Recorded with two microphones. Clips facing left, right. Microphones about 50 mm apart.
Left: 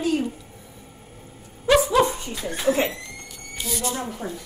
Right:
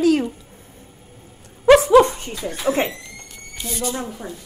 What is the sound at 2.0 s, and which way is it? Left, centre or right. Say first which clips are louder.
Dog: right 5 dB; right.